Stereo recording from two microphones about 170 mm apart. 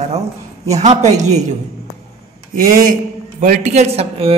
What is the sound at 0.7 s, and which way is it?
Speech, 40° right (ahead or behind).